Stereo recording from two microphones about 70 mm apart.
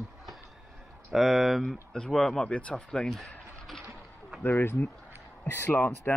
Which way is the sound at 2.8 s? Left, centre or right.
Centre.